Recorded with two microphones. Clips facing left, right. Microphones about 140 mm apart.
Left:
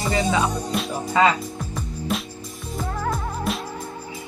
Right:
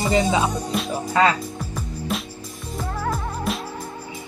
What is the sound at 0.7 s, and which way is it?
Music, centre (ahead or behind).